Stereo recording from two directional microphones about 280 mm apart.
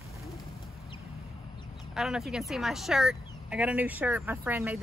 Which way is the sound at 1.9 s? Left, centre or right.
Centre.